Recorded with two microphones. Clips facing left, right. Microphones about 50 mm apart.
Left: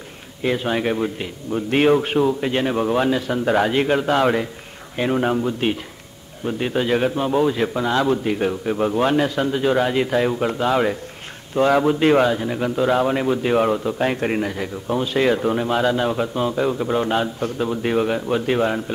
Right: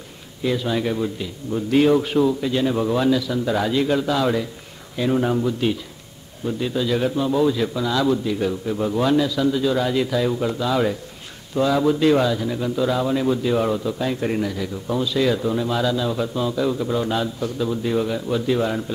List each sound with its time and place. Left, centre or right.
0.4 s a man's voice: left
5.1 s speech: left
6.4 s a man's voice: left